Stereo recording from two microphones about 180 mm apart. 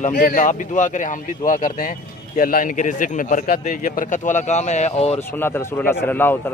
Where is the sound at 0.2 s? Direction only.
45° left (ahead or behind).